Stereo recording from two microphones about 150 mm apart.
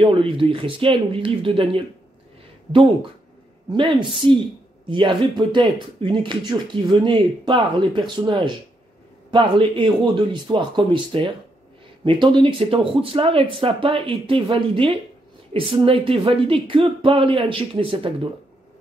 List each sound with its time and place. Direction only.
0.0 s speech: 35° right (ahead or behind)
4.8 s speech: 35° right (ahead or behind)